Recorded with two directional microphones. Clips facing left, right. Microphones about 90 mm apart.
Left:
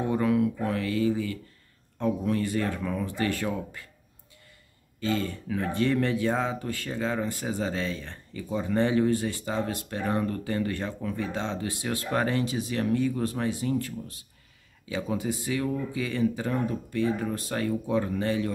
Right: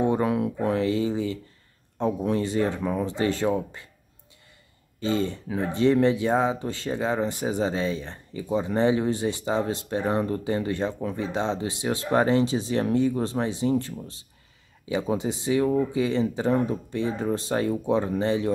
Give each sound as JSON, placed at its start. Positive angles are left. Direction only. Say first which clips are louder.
{"t": 0.0, "sound": "speech", "louder": "right 1 dB", "side_deg": -25}
{"t": 5.0, "sound": "speech", "louder": "right 3 dB", "side_deg": -20}